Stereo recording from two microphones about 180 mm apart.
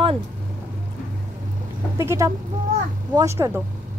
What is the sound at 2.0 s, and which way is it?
Speech, 15° right (ahead or behind).